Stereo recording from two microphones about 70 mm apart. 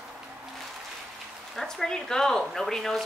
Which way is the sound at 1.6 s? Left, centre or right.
Centre.